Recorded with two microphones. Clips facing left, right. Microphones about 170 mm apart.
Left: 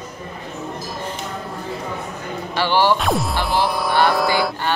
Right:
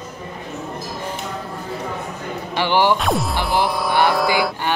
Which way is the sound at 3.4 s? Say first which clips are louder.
Even; 20° right (ahead or behind).